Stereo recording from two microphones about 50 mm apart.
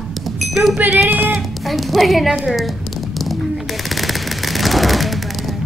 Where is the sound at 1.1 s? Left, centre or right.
Right.